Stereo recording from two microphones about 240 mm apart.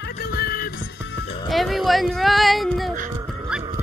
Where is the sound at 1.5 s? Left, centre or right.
Centre.